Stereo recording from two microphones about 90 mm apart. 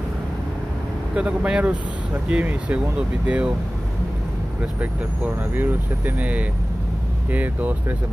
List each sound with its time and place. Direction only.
1.1 s speech: 15° right (ahead or behind)
4.6 s speech: 15° right (ahead or behind)